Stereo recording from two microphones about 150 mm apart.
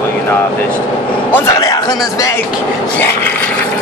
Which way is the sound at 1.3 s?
20° left (ahead or behind).